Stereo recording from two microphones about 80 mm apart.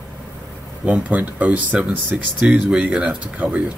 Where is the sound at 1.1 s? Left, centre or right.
Centre.